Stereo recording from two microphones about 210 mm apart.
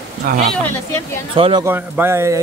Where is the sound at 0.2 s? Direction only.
45° right (ahead or behind).